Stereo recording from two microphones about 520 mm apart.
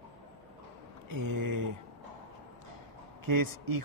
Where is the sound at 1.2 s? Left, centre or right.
Right.